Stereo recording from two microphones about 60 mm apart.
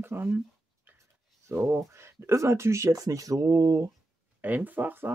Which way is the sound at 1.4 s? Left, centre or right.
Right.